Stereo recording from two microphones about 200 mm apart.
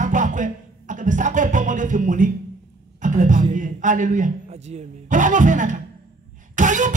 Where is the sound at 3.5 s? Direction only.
40° right (ahead or behind).